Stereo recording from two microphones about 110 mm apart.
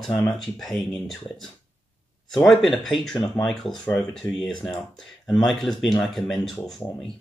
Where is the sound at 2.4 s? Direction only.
5° left (ahead or behind).